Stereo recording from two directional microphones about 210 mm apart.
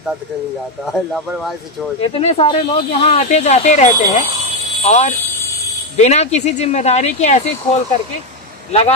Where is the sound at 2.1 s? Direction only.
25° left (ahead or behind).